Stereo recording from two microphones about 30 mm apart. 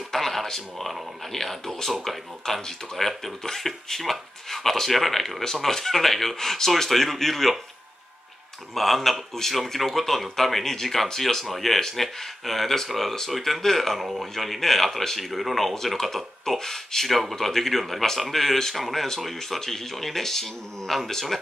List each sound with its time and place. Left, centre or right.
0.1 s speech: centre
2.4 s speech: centre
3.0 s speech: centre
8.7 s speech: centre
11.4 s speech: centre